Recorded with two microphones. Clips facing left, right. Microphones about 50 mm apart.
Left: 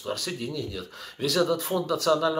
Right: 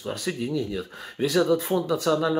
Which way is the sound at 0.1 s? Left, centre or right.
Centre.